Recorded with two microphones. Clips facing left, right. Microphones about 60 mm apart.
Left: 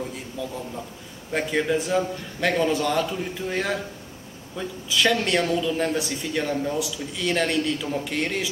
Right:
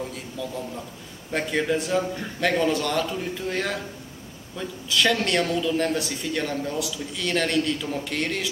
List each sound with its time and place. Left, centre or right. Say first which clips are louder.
0.4 s a man's voice: even; centre
1.3 s speech: left 1 dB; centre